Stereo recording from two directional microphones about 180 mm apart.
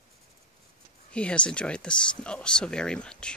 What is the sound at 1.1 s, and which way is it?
Speech, 5° left (ahead or behind).